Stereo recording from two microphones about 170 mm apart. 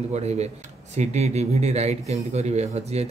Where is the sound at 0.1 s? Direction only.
40° right (ahead or behind).